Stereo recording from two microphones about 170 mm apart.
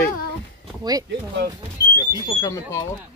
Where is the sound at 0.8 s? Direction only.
20° right (ahead or behind).